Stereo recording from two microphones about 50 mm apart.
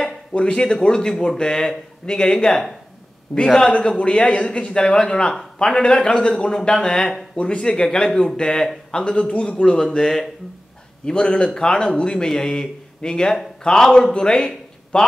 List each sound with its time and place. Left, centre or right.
0.3 s a man's voice: centre
5.3 s a man's voice: centre
5.7 s a man's voice: centre
7.3 s speech: left
7.6 s a man's voice: centre
9.8 s a man's voice: centre
11.1 s a man's voice: centre